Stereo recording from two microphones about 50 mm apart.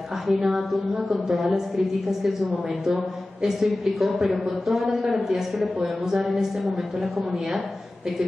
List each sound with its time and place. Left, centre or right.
0.3 s speech: centre
3.4 s speech: centre